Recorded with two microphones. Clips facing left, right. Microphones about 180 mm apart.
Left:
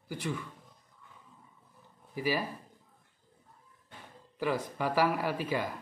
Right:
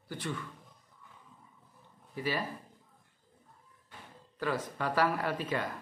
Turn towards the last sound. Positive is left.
turn(degrees=10)  # may be behind; listen again after turning